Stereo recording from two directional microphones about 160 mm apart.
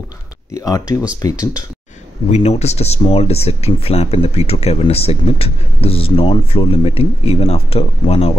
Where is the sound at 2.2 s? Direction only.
45° left (ahead or behind).